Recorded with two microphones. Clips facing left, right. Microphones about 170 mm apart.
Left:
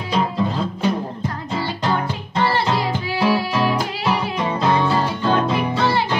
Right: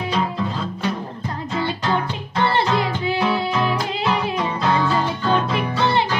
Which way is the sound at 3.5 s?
20° left (ahead or behind).